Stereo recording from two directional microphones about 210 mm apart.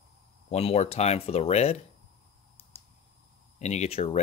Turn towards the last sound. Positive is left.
turn(degrees=30)  # may be behind; listen again after turning